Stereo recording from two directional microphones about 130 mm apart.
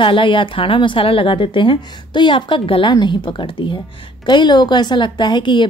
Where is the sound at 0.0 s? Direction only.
40° left (ahead or behind).